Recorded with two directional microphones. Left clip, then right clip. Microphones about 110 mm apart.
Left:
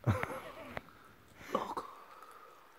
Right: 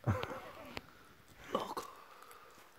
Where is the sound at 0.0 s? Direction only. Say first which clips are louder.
Left 3 dB; 20° left (ahead or behind).